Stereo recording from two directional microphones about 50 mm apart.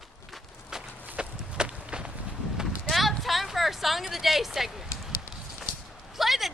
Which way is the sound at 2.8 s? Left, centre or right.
Centre.